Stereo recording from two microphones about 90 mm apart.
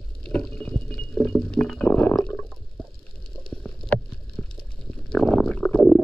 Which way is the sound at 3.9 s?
20° left (ahead or behind).